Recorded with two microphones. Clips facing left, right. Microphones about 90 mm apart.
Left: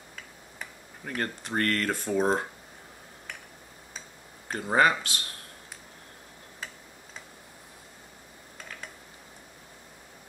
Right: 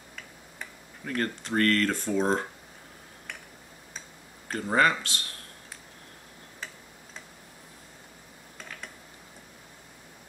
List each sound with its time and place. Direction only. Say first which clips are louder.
1.0 s speech: right 2 dB; 20° left (ahead or behind)
1.9 s speech: even; 10° left (ahead or behind)
4.6 s speech: left 1 dB; 15° left (ahead or behind)
8.5 s mechanisms: even; 5° left (ahead or behind)